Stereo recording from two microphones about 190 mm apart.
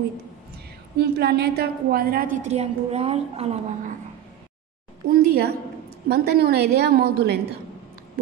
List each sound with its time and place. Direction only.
0.9 s a woman's voice: 60° right (ahead or behind); by 3.9 s 35° right (ahead or behind)
5.0 s a woman's voice: 55° right (ahead or behind)